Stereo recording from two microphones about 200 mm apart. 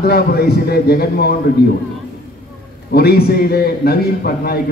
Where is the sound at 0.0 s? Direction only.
50° left (ahead or behind).